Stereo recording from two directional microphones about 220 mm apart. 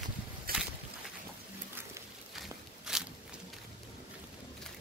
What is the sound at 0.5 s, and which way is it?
Boat, 40° right (ahead or behind).